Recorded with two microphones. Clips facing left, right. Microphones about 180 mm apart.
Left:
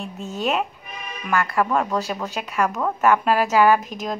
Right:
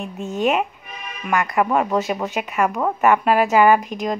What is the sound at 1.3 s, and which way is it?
Speech, 15° right (ahead or behind).